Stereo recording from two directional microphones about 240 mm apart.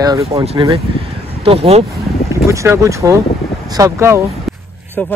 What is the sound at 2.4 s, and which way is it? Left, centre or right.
Speech, centre.